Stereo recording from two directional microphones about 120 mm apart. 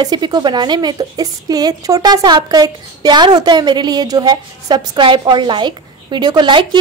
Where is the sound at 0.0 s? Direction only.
35° right (ahead or behind).